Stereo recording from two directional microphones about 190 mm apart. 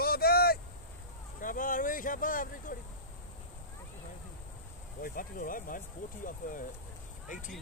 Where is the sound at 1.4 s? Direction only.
45° left (ahead or behind).